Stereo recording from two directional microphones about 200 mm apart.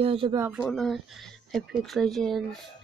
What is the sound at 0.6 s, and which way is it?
Speech, centre (ahead or behind).